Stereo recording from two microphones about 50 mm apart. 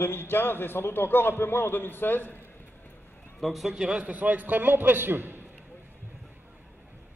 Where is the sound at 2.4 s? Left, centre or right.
Left.